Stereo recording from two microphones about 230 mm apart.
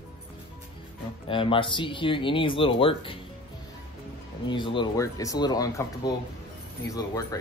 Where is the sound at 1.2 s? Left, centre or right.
Left.